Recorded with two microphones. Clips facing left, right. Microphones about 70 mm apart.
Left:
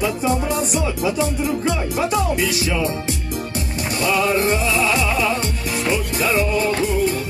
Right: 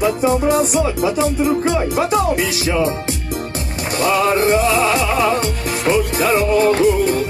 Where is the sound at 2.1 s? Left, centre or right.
Right.